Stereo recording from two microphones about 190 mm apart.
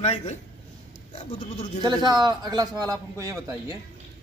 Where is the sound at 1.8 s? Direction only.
20° right (ahead or behind).